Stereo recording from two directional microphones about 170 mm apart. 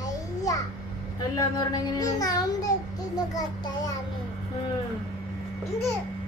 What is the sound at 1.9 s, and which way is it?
Speech, 20° left (ahead or behind).